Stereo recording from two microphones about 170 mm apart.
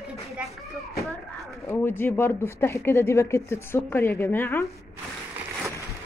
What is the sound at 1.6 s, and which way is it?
Speech, 15° left (ahead or behind).